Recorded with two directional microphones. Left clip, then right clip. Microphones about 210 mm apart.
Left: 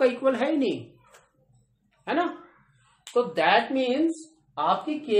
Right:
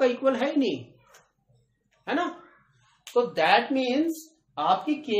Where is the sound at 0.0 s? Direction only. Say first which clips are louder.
Left 1 dB; 10° left (ahead or behind).